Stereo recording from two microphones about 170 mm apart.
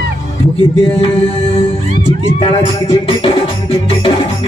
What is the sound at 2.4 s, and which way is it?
Music, 30° left (ahead or behind).